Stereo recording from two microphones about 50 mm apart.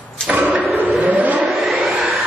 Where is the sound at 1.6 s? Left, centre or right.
Centre.